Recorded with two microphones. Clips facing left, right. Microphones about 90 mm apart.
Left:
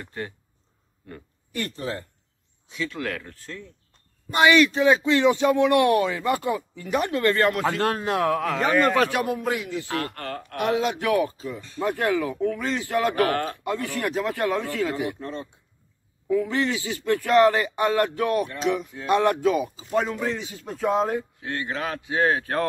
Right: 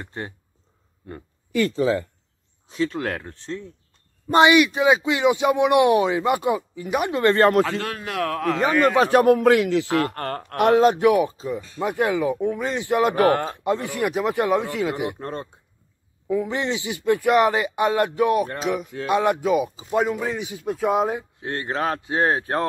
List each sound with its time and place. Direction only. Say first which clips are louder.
0.0 s speech: right 1 dB; 30° right (ahead or behind)
2.7 s a man's voice: right 5 dB; 35° right (ahead or behind)
7.8 s a man's voice: left 4 dB; 30° left (ahead or behind)
8.4 s speech: right 3 dB; centre (ahead or behind)
8.6 s speech: right 2 dB; 10° right (ahead or behind)
9.1 s speech: right 10 dB; 50° right (ahead or behind)
9.4 s a man's voice: right 10 dB; 70° right (ahead or behind); by 9.9 s 85° right
9.9 s a man's voice: right 7 dB; 35° right (ahead or behind)
10.2 s speech: right 4 dB; 50° right (ahead or behind)
11.0 s speech: right 5 dB; 20° right (ahead or behind)
15.1 s speech: right 2 dB; 45° right (ahead or behind)
16.3 s speech: even; 20° right (ahead or behind)
18.6 s speech: even; 5° right (ahead or behind)
21.4 s a man's voice: right 4 dB; 35° right (ahead or behind)